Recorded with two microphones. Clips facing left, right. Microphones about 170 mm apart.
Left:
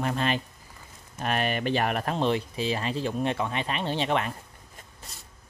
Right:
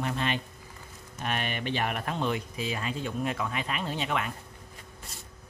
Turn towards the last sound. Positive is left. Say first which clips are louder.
# left 4 dB
turn(degrees=30)  # may be behind; listen again after turning